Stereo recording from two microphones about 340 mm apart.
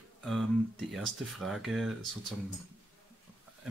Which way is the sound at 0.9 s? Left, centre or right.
Centre.